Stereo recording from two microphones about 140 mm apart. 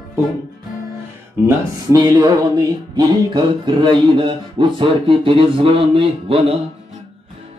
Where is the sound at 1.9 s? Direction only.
25° right (ahead or behind); by 6.5 s 40° right (ahead or behind).